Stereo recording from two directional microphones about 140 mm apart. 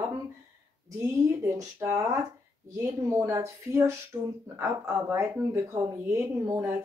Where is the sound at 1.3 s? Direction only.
20° right (ahead or behind).